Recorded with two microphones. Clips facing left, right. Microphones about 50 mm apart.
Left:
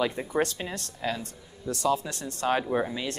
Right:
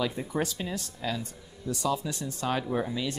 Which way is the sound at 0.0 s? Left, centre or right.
Left.